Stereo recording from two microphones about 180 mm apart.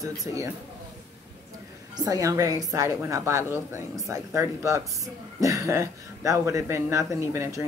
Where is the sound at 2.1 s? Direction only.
20° right (ahead or behind).